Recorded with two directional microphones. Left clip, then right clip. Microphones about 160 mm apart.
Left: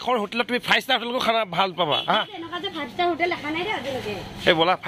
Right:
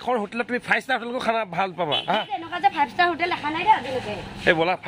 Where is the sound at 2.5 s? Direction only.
25° right (ahead or behind).